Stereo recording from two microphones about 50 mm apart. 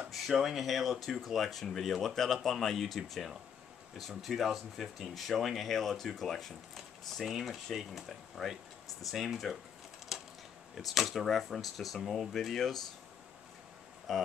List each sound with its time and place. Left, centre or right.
0.3 s speech: centre
10.1 s a sound: centre
10.7 s speech: centre
12.3 s speech: centre
14.1 s speech: centre